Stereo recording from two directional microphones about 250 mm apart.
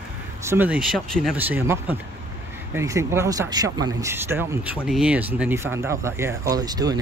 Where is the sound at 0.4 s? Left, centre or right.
Centre.